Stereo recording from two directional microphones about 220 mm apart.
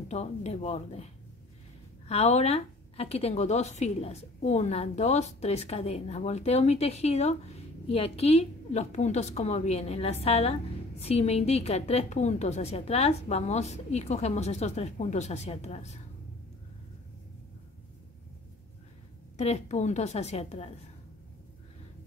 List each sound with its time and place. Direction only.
0.1 s a woman's voice: 30° left (ahead or behind)
19.3 s a woman's voice: 30° left (ahead or behind)